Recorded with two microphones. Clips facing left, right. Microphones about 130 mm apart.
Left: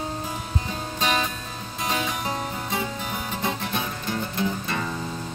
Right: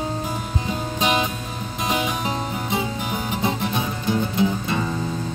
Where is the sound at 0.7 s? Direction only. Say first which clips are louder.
Right 4 dB; 15° right (ahead or behind).